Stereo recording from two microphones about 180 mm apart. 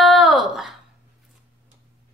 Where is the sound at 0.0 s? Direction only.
Centre (ahead or behind).